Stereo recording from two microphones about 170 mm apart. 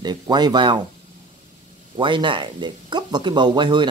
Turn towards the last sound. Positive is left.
turn(degrees=-25)  # may be behind; listen again after turning